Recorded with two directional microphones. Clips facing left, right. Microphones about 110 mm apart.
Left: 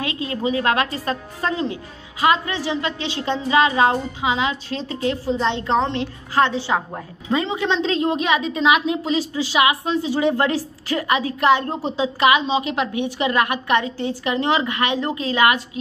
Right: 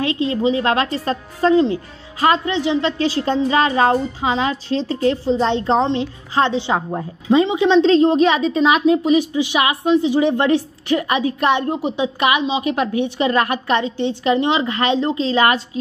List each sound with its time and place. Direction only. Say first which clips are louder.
0.0 s a woman's voice: right 6 dB; 30° right (ahead or behind)
3.0 s a woman's voice: right 6 dB; 40° right (ahead or behind); by 7.8 s 15° right (ahead or behind)
7.8 s a woman's voice: right 8 dB; 30° right (ahead or behind)
9.0 s a woman's voice: right 6 dB; 20° right (ahead or behind)
12.7 s a woman's voice: right 3 dB; 30° right (ahead or behind)